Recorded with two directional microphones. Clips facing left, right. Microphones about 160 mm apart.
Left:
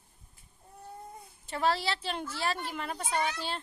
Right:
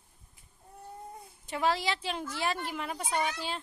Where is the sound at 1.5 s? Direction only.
15° right (ahead or behind).